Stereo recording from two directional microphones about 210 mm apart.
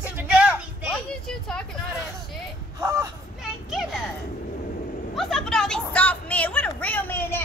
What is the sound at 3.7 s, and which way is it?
Speech, centre (ahead or behind).